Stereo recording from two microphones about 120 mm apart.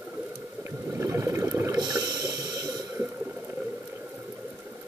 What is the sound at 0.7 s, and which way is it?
Water, 25° right (ahead or behind).